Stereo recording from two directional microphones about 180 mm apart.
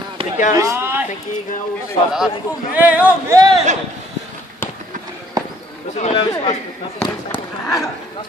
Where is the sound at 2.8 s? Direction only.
10° right (ahead or behind).